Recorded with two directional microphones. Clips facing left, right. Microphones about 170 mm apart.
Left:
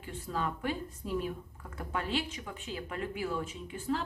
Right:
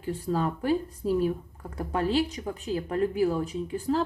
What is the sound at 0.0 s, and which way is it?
Speech, 35° right (ahead or behind).